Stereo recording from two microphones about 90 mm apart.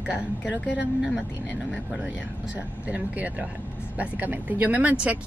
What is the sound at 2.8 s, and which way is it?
Speech, 15° right (ahead or behind).